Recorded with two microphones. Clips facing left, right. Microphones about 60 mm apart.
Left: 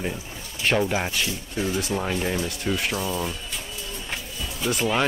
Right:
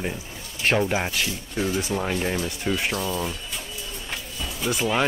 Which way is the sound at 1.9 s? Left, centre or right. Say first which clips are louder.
Even; centre.